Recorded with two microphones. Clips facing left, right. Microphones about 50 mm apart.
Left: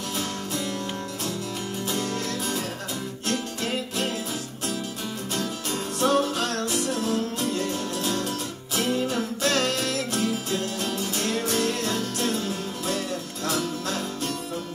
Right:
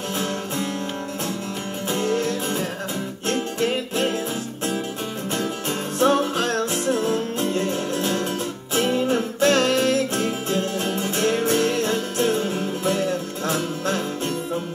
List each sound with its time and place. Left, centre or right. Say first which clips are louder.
1.9 s music: right 8 dB; right
5.3 s music: right 4 dB; right